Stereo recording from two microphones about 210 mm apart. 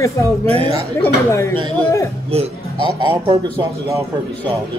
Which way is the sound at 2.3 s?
30° right (ahead or behind).